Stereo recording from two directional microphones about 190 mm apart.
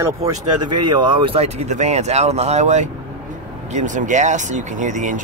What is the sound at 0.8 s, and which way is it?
Speech, 25° right (ahead or behind).